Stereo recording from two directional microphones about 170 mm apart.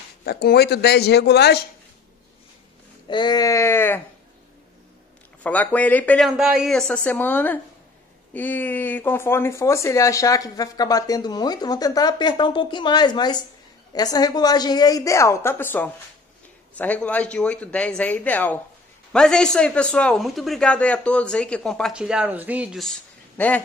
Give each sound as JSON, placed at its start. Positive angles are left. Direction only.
{"t": 0.2, "sound": "speech", "side_deg": 70}
{"t": 3.1, "sound": "speech", "side_deg": 25}
{"t": 5.4, "sound": "speech", "side_deg": 10}